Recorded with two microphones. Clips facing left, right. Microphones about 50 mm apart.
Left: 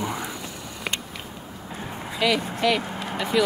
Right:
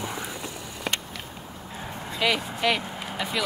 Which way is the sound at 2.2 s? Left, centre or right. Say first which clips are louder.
Left 2 dB; right.